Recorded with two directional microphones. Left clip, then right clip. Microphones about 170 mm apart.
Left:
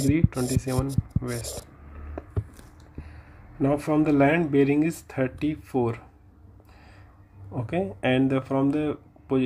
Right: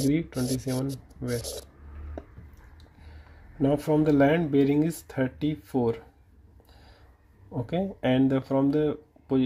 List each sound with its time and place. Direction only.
0.1 s speech: 30° right (ahead or behind)
3.5 s speech: 40° right (ahead or behind)
7.5 s speech: 40° right (ahead or behind)